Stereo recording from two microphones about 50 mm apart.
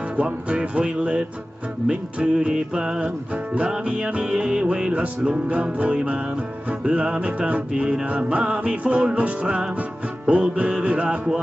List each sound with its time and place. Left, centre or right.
0.1 s music: right